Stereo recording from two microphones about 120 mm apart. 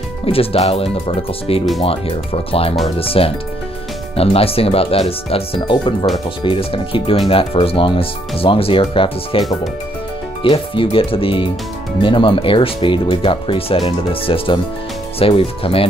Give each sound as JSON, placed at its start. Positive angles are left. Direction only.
{"t": 0.2, "sound": "speech", "side_deg": 50}
{"t": 10.4, "sound": "speech", "side_deg": 45}